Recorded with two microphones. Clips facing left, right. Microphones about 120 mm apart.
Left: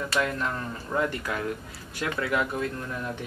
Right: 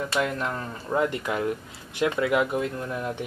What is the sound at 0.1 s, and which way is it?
Speech, 15° right (ahead or behind).